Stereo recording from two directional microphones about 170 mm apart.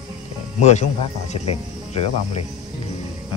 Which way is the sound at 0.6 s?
40° left (ahead or behind).